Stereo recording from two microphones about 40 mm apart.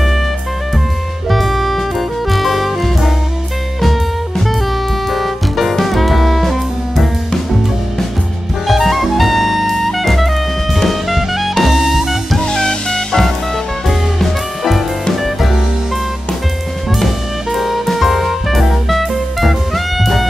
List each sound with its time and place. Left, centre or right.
1.3 s music: centre
5.1 s music: centre
8.6 s jazz: centre
10.8 s music: centre
12.4 s music: centre
13.8 s music: centre
17.5 s music: centre